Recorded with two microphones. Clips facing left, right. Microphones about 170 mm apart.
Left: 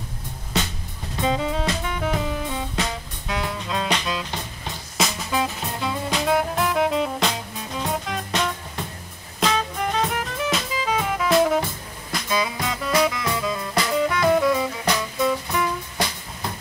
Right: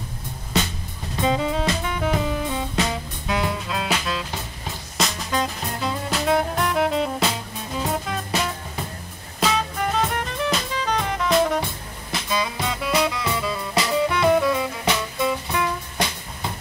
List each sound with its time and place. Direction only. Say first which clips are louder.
1.3 s music: right 2 dB; 5° right (ahead or behind)